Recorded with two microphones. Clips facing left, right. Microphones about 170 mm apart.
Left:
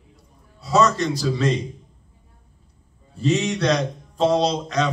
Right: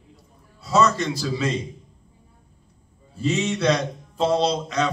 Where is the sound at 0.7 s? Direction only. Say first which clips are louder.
Left 1 dB; centre (ahead or behind).